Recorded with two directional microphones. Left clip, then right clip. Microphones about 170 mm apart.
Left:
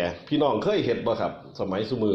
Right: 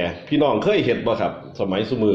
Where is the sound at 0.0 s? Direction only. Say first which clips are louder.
Right 4 dB; 30° left (ahead or behind).